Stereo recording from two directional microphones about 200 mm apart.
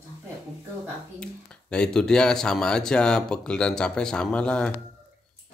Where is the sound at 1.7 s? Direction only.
5° left (ahead or behind).